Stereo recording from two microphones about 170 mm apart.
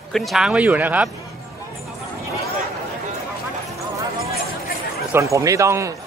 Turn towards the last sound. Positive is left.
turn(degrees=-15)  # may be behind; listen again after turning